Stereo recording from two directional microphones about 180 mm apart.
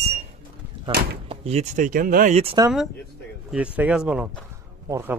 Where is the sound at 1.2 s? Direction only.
35° right (ahead or behind).